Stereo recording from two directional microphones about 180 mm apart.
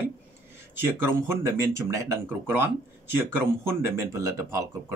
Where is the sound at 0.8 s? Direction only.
15° right (ahead or behind).